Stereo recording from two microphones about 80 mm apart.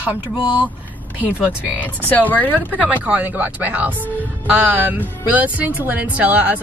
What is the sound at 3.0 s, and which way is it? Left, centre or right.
Speech, centre.